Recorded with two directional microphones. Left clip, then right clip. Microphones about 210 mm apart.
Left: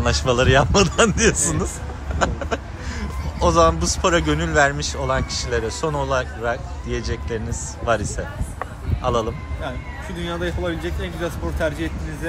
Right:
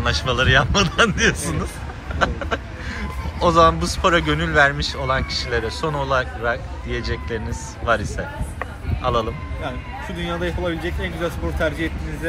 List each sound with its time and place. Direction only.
0.0 s speech: 25° left (ahead or behind)
9.6 s speech: 5° left (ahead or behind)